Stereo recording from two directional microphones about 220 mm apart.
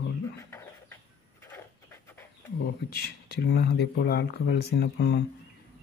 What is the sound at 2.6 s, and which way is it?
Speech, 45° left (ahead or behind).